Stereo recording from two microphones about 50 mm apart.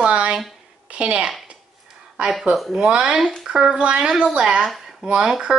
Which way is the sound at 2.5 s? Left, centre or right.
Centre.